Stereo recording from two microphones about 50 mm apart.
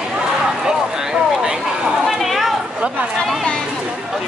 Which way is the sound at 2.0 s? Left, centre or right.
Centre.